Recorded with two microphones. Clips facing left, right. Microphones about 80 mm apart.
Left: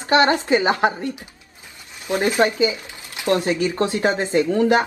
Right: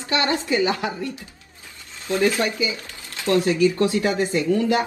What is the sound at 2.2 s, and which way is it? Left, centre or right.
A woman's voice, left.